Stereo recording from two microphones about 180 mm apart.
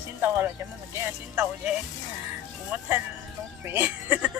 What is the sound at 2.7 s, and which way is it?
Speech, 10° right (ahead or behind).